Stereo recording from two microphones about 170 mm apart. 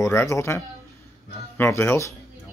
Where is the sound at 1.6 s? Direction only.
15° left (ahead or behind).